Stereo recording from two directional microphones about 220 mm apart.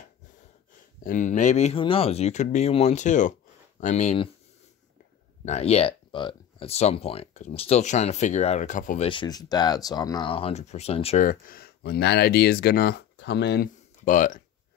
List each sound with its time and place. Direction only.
1.0 s speech: 35° left (ahead or behind)
5.4 s speech: 30° left (ahead or behind)